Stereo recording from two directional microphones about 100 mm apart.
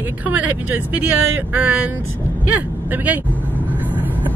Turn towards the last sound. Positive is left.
turn(degrees=-15)  # may be behind; listen again after turning